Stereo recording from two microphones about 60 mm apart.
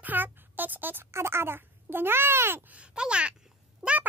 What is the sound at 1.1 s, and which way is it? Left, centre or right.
Babbling, right.